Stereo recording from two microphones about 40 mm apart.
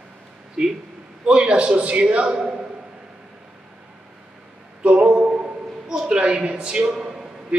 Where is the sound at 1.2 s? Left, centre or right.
Right.